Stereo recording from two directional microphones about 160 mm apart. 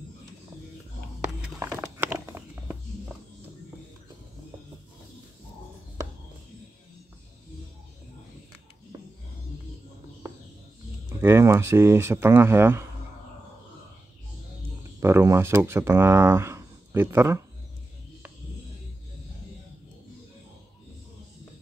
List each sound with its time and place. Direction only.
1.6 s a sound: 15° right (ahead or behind)
11.1 s speech: 15° right (ahead or behind)
15.0 s speech: 15° right (ahead or behind)